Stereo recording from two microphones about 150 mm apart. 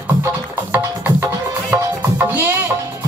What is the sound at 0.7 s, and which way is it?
Music, 15° right (ahead or behind).